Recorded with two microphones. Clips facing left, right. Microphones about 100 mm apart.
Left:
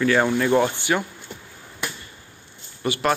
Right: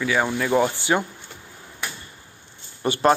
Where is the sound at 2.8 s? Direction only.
30° right (ahead or behind).